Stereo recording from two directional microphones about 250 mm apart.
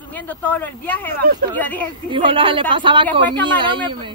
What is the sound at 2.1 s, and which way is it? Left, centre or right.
Speech, centre.